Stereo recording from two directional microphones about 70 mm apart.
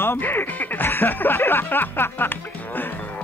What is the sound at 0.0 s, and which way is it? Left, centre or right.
Speech, left.